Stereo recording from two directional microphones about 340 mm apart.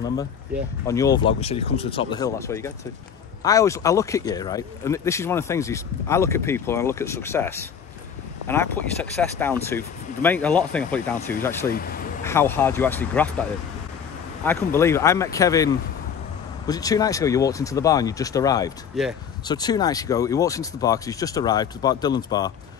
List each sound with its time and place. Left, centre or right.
0.0 s speech: centre
11.7 s speech: left
12.3 s speech: centre
14.4 s speech: centre
18.9 s speech: centre
19.4 s speech: centre